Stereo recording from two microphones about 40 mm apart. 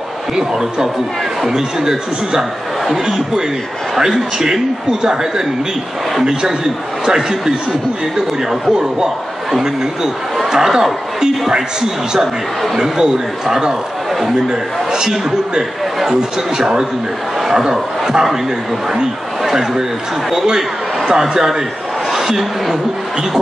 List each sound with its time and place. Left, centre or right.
0.4 s a man's voice: centre
3.9 s a man's voice: centre
6.2 s a man's voice: centre
19.4 s a man's voice: centre